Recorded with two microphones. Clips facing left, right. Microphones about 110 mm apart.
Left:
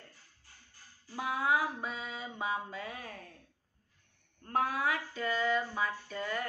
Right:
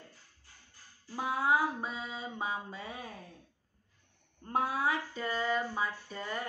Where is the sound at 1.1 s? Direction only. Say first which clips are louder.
Right 1 dB; 30° right (ahead or behind).